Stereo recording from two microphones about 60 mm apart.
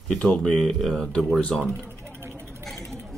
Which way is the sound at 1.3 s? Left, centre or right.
Centre.